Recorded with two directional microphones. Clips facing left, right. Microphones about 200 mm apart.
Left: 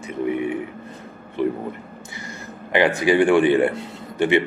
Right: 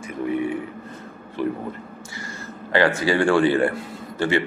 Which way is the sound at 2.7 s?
20° left (ahead or behind).